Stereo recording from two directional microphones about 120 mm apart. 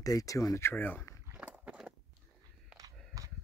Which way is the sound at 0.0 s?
30° left (ahead or behind).